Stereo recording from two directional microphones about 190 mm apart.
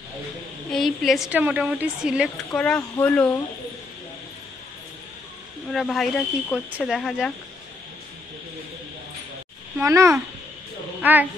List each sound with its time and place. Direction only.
0.7 s a woman's voice: centre (ahead or behind)
5.7 s a woman's voice: centre (ahead or behind)
9.8 s a child's voice: 15° right (ahead or behind)